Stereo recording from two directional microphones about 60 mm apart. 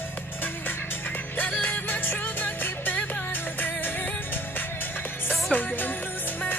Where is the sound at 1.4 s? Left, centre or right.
Left.